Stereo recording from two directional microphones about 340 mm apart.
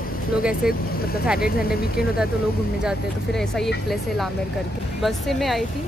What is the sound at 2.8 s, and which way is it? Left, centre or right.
Speech, centre.